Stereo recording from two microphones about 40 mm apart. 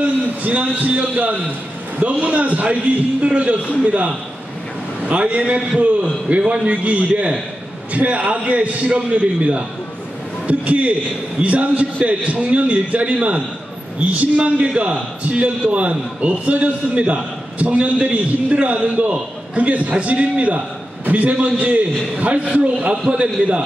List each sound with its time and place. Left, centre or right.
0.0 s a man's voice: right